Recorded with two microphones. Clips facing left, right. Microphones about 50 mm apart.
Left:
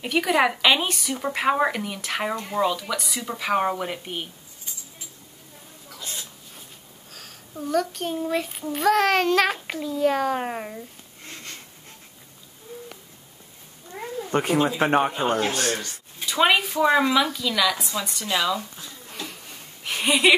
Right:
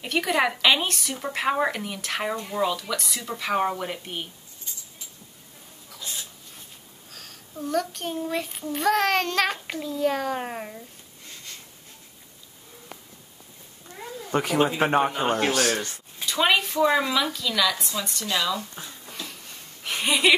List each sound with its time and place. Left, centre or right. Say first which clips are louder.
0.0 s a child's voice: left 3 dB; centre
5.9 s hiccup: left 1 dB; left
7.1 s a child's voice: left 1 dB; centre
14.3 s a child's voice: left 1 dB; centre
16.3 s speech: left 2 dB; centre
18.2 s speech: left 2 dB; centre
19.1 s a sound: left 4 dB; centre